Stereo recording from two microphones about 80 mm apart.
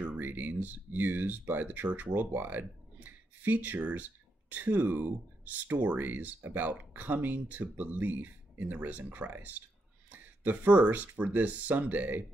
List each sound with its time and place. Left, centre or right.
0.0 s speech: right